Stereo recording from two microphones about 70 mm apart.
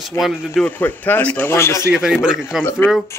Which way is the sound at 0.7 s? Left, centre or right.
Left.